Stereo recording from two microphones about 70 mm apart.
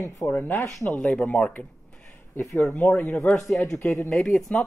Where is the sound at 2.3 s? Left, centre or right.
Left.